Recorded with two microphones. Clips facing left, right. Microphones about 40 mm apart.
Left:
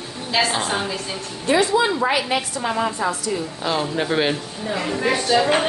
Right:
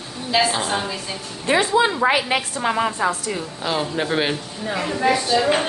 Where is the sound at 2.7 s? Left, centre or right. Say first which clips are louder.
Right 1 dB; right.